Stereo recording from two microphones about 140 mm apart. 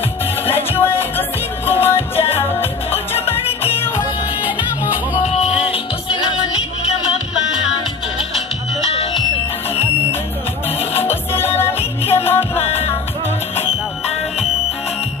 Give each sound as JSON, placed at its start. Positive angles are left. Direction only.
{"t": 0.5, "sound": "music", "side_deg": 15}
{"t": 4.4, "sound": "music", "side_deg": -10}
{"t": 5.7, "sound": "music", "side_deg": 35}
{"t": 8.9, "sound": "music", "side_deg": 40}
{"t": 11.0, "sound": "music", "side_deg": 15}
{"t": 12.6, "sound": "music", "side_deg": 45}